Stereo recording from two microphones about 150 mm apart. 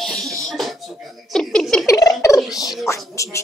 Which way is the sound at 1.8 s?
25° left (ahead or behind).